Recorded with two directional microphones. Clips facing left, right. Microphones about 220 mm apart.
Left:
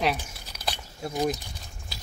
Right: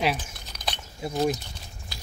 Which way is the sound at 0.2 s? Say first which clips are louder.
Even; 5° left (ahead or behind).